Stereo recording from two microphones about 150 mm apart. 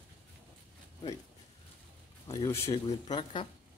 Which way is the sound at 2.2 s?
20° left (ahead or behind).